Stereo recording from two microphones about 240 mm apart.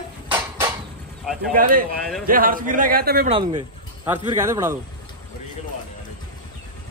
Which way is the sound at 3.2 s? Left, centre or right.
Centre.